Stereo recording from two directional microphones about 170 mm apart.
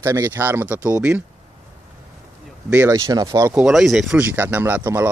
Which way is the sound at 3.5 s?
5° right (ahead or behind).